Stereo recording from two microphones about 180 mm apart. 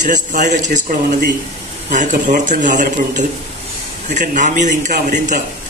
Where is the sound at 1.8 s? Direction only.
45° right (ahead or behind).